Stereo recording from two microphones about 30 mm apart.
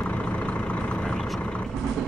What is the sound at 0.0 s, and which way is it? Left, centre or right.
Vehicle, left.